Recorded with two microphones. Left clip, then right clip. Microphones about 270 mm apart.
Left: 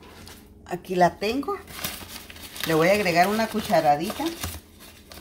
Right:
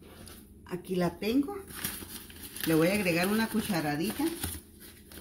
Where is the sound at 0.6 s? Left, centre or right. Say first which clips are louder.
Left 12 dB; left.